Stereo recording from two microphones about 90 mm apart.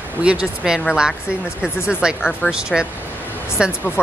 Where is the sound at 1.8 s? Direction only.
10° right (ahead or behind).